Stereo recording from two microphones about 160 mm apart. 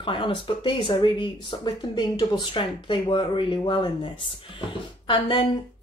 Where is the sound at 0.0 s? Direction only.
30° left (ahead or behind).